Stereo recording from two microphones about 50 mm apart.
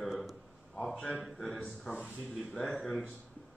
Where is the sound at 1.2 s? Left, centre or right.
Centre.